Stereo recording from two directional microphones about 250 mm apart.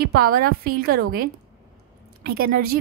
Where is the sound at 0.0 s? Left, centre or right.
Right.